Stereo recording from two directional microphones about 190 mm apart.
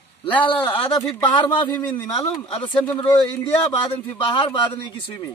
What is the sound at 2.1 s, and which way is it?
Speech, 25° left (ahead or behind).